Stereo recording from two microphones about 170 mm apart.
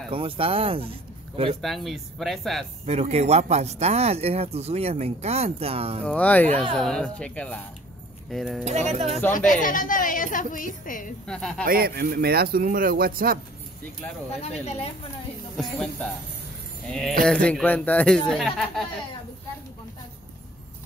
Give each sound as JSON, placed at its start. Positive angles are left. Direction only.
{"t": 0.1, "sound": "speech", "side_deg": -35}
{"t": 1.6, "sound": "speech", "side_deg": 0}
{"t": 2.8, "sound": "speech", "side_deg": -40}
{"t": 6.0, "sound": "speech", "side_deg": 10}
{"t": 8.6, "sound": "speech", "side_deg": -40}
{"t": 9.5, "sound": "a woman's voice", "side_deg": 55}
{"t": 11.2, "sound": "speech", "side_deg": 5}
{"t": 11.6, "sound": "speech", "side_deg": -60}
{"t": 14.3, "sound": "speech", "side_deg": 40}
{"t": 15.5, "sound": "speech", "side_deg": 5}
{"t": 17.2, "sound": "speech", "side_deg": 5}